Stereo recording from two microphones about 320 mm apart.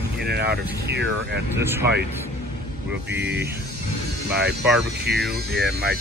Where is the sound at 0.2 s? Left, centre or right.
Right.